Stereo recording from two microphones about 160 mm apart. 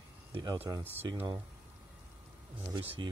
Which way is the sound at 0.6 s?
15° right (ahead or behind).